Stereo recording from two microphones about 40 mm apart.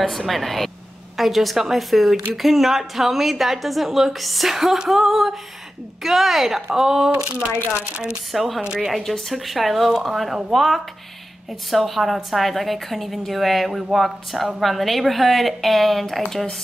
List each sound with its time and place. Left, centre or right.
0.3 s a woman's voice: centre
7.2 s speech: right
8.3 s a woman's voice: centre
8.6 s speech: centre
8.9 s a woman's voice: centre